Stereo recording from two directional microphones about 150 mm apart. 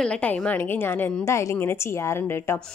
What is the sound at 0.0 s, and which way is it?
Speech, 5° left (ahead or behind).